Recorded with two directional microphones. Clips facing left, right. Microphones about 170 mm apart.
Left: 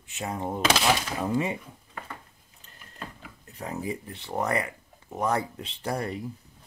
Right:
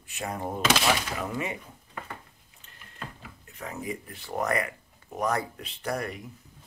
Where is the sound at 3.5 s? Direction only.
35° left (ahead or behind).